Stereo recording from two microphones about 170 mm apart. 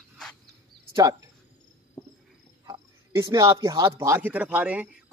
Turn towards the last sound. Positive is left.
turn(degrees=-10)  # may be behind; listen again after turning